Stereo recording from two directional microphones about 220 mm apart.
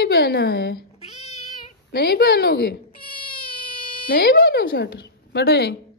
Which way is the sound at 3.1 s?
25° left (ahead or behind).